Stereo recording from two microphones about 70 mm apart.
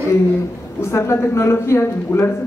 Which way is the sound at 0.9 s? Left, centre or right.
Left.